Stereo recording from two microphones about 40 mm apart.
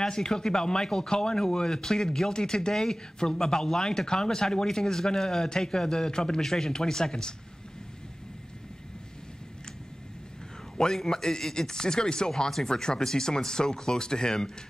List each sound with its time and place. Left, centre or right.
0.0 s speech: centre
10.8 s speech: centre